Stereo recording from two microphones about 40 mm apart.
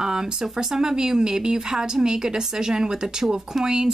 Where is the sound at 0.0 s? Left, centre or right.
Centre.